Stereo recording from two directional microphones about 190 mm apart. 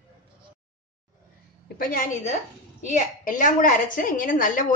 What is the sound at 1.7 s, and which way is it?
A woman's voice, 50° left (ahead or behind).